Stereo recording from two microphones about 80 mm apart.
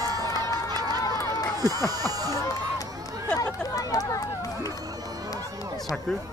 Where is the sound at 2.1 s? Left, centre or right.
Right.